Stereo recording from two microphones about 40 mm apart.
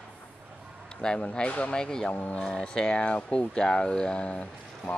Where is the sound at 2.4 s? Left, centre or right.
Centre.